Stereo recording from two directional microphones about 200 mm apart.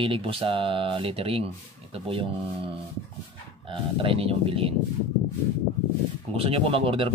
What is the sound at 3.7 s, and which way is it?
Speech, 25° right (ahead or behind).